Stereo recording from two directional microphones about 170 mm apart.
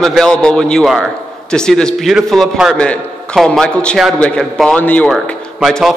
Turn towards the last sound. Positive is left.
turn(degrees=0)  # may be behind; listen again after turning